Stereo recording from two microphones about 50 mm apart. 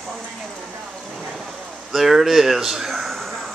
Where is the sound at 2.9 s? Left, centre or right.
Centre.